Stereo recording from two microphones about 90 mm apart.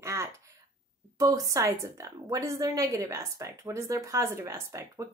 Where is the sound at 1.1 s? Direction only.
40° right (ahead or behind).